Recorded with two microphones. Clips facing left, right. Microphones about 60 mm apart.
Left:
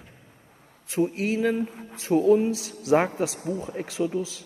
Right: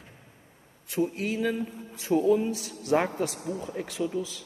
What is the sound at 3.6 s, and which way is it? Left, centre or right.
Speech, left.